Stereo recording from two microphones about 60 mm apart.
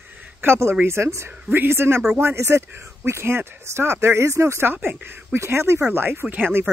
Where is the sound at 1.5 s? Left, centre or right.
Right.